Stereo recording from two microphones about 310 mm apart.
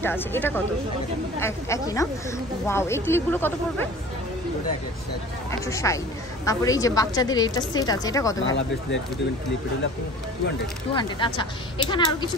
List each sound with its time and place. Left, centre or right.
0.0 s a woman's voice: centre
5.7 s a woman's voice: centre
8.4 s speech: left
11.0 s a woman's voice: centre